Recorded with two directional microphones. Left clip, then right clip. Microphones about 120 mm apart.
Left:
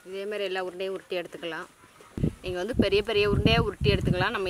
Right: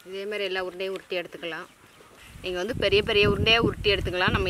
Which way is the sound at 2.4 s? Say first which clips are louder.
Right 1 dB; centre (ahead or behind).